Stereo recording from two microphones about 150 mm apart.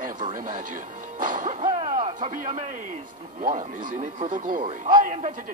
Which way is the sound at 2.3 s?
60° right (ahead or behind).